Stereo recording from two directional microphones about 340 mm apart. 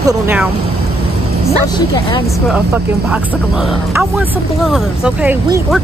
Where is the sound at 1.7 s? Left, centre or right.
Centre.